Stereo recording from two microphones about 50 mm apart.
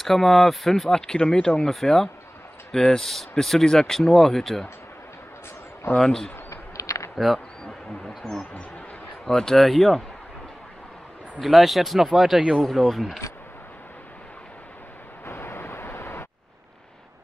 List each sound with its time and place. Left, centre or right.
0.0 s speech: centre
5.9 s speech: centre
6.5 s a sound: left
7.2 s speech: centre
9.2 s speech: centre
11.4 s speech: centre
15.2 s vehicle: left